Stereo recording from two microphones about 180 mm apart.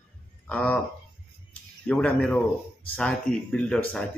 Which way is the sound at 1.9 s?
5° left (ahead or behind).